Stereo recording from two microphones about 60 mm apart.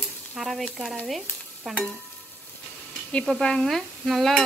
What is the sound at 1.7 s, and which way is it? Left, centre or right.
Speech, centre.